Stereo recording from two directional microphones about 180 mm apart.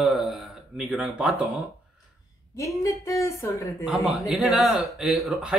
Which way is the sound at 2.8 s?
15° left (ahead or behind).